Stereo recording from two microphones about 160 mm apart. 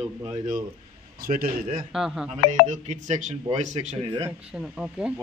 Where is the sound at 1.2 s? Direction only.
65° right (ahead or behind).